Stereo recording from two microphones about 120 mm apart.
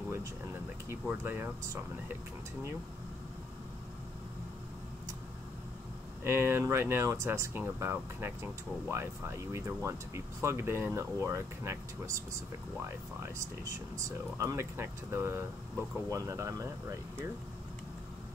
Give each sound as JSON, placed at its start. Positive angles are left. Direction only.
{"t": 1.0, "sound": "speech", "side_deg": -15}
{"t": 6.2, "sound": "speech", "side_deg": -20}
{"t": 14.0, "sound": "speech", "side_deg": -25}